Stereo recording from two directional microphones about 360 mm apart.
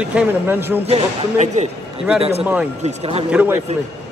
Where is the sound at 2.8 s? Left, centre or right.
Centre.